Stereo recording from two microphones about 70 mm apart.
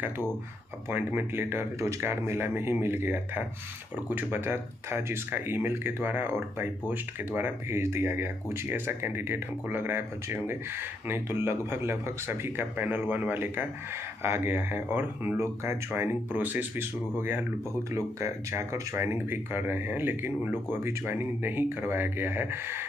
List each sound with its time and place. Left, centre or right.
0.8 s a man's voice: right
17.9 s speech: right